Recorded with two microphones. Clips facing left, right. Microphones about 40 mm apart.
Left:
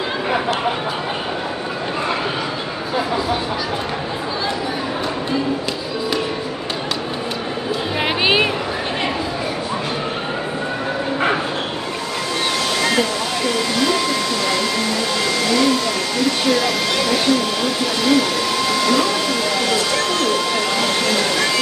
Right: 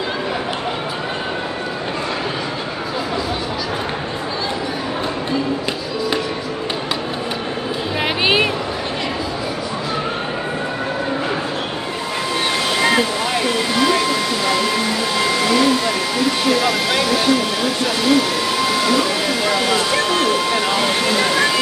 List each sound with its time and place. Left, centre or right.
8.0 s music: centre
12.7 s a sound: centre
13.5 s vacuum cleaner: centre